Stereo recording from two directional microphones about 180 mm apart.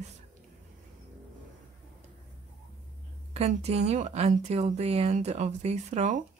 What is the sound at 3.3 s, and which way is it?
Speech, 35° right (ahead or behind).